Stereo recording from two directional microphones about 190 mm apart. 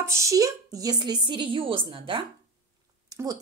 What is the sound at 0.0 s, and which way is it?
A woman's voice, 15° right (ahead or behind).